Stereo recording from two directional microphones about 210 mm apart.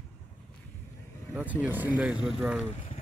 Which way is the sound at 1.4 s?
5° right (ahead or behind).